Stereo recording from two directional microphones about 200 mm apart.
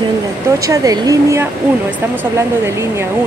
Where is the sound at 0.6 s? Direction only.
15° right (ahead or behind).